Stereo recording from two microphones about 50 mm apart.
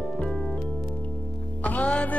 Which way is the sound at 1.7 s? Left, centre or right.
Left.